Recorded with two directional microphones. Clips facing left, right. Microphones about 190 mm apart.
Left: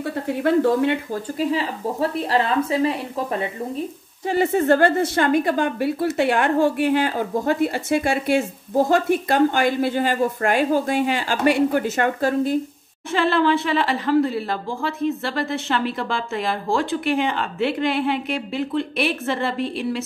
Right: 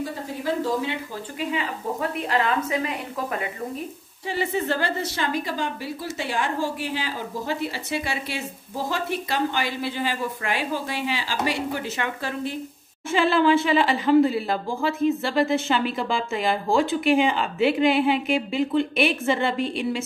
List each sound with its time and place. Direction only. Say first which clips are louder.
0.0 s speech: left 6 dB; 65° left (ahead or behind)
1.4 s speech: left 4 dB; 35° left (ahead or behind)
4.3 s a woman's voice: left 8 dB; 45° left (ahead or behind)
13.1 s speech: even; centre (ahead or behind)